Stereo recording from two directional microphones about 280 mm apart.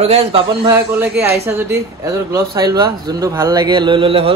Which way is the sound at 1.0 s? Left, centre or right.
Centre.